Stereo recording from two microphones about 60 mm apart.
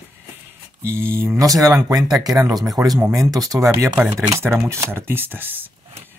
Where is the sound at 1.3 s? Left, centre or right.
Right.